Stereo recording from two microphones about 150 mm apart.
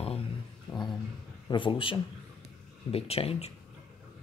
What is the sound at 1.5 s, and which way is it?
Speech, 35° left (ahead or behind).